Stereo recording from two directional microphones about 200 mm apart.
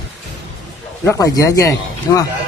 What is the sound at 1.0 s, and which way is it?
Speech, 15° left (ahead or behind).